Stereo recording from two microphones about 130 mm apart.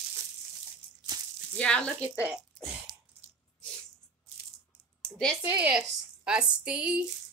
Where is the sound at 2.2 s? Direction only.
10° right (ahead or behind).